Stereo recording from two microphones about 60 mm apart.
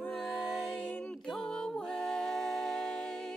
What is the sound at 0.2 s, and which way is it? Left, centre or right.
Music, centre.